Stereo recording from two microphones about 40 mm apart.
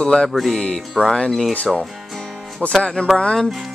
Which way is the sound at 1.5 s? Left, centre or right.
Left.